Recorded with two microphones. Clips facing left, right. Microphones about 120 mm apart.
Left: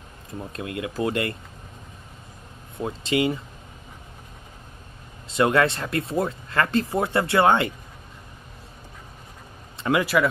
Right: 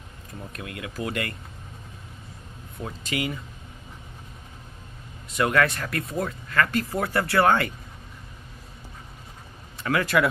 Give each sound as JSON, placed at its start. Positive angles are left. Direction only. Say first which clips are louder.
{"t": 0.5, "sound": "speech", "louder": "left 6 dB", "side_deg": 25}
{"t": 2.8, "sound": "speech", "louder": "left 6 dB", "side_deg": 25}
{"t": 5.3, "sound": "speech", "louder": "left 3 dB", "side_deg": 25}
{"t": 10.0, "sound": "speech", "louder": "right 3 dB", "side_deg": 0}